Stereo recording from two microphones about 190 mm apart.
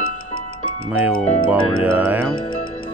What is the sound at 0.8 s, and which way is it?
Speech, 10° right (ahead or behind).